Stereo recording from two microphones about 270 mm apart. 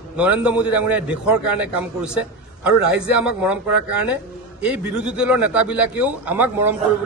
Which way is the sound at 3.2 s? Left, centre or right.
Centre.